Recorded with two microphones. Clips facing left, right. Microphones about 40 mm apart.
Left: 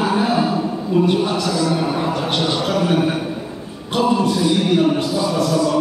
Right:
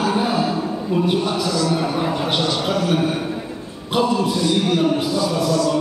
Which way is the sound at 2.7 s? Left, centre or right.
Centre.